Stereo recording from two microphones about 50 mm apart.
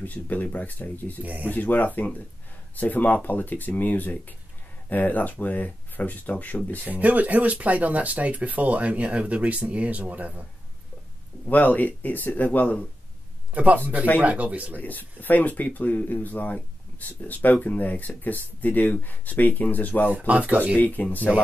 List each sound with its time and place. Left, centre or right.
0.0 s speech: left
1.2 s speech: right
1.5 s speech: left
6.9 s speech: right
11.4 s speech: left
13.5 s speech: right
14.8 s speech: left
20.1 s speech: right
20.7 s speech: left